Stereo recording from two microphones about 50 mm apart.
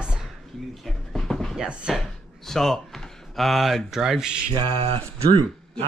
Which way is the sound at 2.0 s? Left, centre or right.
Centre.